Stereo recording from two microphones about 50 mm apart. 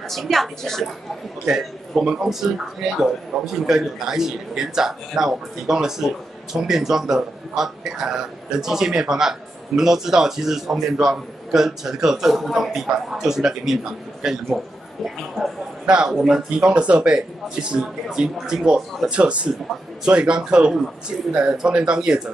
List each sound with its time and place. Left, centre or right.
0.1 s speech: centre
1.4 s speech: centre
15.8 s a man's voice: centre
16.1 s speech: centre
19.0 s speech: right